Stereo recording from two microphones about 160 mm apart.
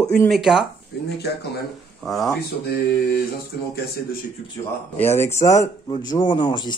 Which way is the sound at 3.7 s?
80° left.